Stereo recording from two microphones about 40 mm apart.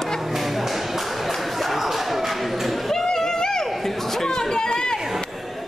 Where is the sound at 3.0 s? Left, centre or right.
Centre.